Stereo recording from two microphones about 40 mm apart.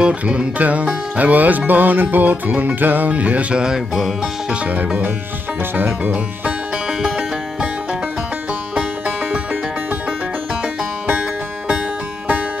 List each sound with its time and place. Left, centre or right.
0.0 s music: right
5.6 s speech: right
6.9 s music: centre
8.7 s music: right
11.1 s music: right